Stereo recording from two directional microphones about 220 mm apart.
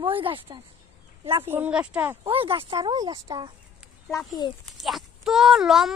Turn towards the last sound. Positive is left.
turn(degrees=0)  # may be behind; listen again after turning